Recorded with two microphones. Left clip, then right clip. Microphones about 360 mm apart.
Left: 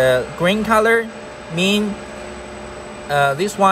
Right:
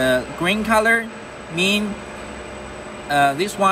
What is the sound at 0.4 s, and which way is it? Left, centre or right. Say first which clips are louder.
Speech: left 3 dB; left.